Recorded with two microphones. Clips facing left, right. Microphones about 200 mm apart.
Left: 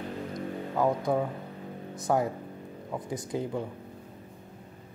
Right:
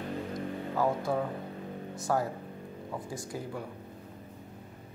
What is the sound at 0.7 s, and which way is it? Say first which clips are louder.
Speech: left 3 dB; 20° left (ahead or behind).